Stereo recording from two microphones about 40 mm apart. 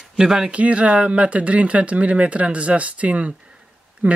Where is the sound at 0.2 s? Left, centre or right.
Centre.